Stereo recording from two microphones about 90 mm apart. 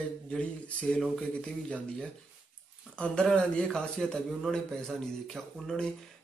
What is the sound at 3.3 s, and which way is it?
A man's voice, 5° left (ahead or behind).